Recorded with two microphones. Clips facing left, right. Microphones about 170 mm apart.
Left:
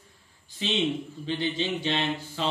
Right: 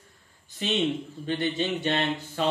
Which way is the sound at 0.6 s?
50° right (ahead or behind).